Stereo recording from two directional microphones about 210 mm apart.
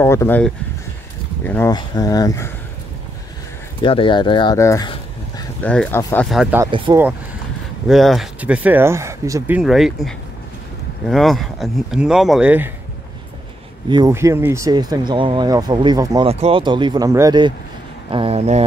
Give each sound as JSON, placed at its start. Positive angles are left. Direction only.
{"t": 0.0, "sound": "speech", "side_deg": 10}
{"t": 1.5, "sound": "speech", "side_deg": 15}
{"t": 3.8, "sound": "speech", "side_deg": 25}
{"t": 6.2, "sound": "speech", "side_deg": 0}
{"t": 6.6, "sound": "speech", "side_deg": -15}
{"t": 7.9, "sound": "speech", "side_deg": 0}
{"t": 9.6, "sound": "speech", "side_deg": 0}
{"t": 13.8, "sound": "speech", "side_deg": -20}
{"t": 16.3, "sound": "speech", "side_deg": -30}